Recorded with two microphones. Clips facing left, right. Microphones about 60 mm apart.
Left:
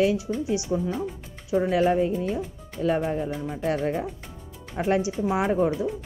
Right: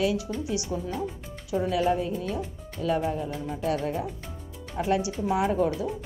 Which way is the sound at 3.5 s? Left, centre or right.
Left.